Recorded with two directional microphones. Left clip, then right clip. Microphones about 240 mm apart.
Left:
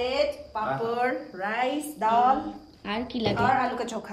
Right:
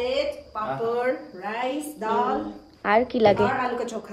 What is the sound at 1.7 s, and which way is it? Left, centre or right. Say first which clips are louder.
Speech: even; right.